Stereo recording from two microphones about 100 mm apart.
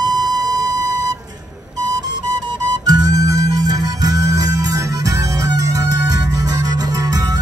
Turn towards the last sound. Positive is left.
turn(degrees=-35)  # may be behind; listen again after turning